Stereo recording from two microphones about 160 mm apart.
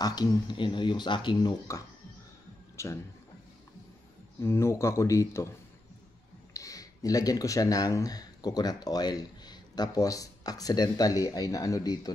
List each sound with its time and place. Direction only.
0.0 s speech: 25° left (ahead or behind)
2.8 s speech: 15° left (ahead or behind)
4.4 s speech: 15° left (ahead or behind)
6.5 s speech: 20° left (ahead or behind)